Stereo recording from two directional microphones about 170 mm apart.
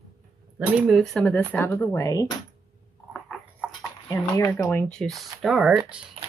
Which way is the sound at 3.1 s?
Centre (ahead or behind).